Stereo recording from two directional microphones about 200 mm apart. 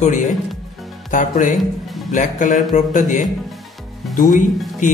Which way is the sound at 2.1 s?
40° left (ahead or behind).